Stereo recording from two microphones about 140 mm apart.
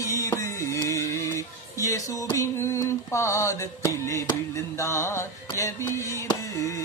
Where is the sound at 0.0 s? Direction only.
20° left (ahead or behind).